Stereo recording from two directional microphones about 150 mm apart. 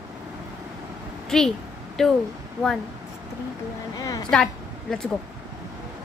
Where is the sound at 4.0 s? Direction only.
25° left (ahead or behind).